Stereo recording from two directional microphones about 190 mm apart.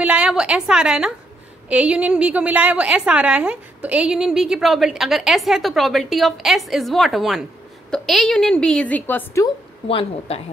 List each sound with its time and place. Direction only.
0.0 s a woman's voice: 5° right (ahead or behind); by 9.5 s 15° left (ahead or behind)
9.8 s speech: 30° left (ahead or behind)